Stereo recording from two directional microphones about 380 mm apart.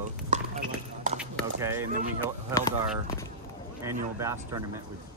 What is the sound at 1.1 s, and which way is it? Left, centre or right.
Speech, centre.